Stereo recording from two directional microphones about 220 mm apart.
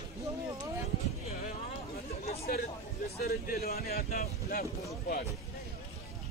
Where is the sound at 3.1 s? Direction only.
45° left (ahead or behind).